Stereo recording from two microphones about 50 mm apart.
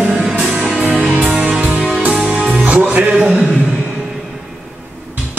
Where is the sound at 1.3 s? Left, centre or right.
Centre.